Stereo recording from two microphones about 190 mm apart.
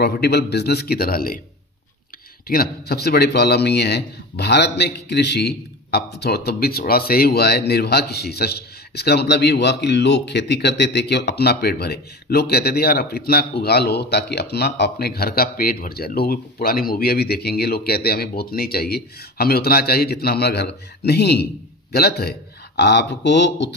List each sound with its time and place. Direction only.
0.0 s a man's voice: 60° left (ahead or behind)
2.4 s a man's voice: 50° left (ahead or behind); by 23.7 s 65° left (ahead or behind)